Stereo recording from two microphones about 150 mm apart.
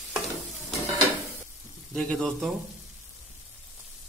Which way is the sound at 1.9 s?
5° left (ahead or behind).